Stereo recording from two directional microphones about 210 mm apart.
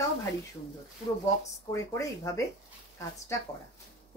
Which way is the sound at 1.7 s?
15° left (ahead or behind).